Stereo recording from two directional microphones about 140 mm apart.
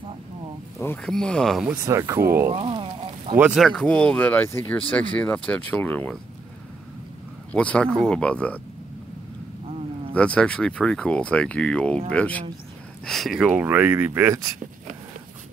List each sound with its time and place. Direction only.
1.0 s speech: 5° left (ahead or behind)
1.9 s speech: 20° right (ahead or behind)
2.5 s a sound: 40° right (ahead or behind)
3.3 s speech: 5° right (ahead or behind)
3.6 s speech: 5° left (ahead or behind)
7.5 s speech: 10° left (ahead or behind)
10.1 s speech: 10° left (ahead or behind); by 14.5 s 20° right (ahead or behind)